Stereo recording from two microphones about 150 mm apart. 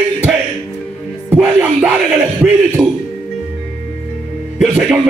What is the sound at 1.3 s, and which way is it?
Music, 10° right (ahead or behind).